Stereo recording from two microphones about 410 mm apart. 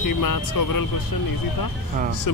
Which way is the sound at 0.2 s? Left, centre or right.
Left.